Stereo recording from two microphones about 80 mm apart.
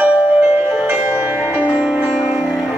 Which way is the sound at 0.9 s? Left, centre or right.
Right.